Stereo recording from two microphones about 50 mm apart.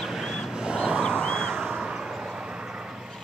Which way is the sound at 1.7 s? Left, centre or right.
Centre.